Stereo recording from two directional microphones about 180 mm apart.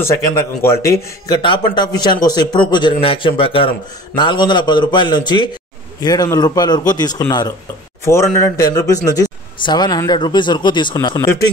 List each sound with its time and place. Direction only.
0.0 s speech: 15° left (ahead or behind)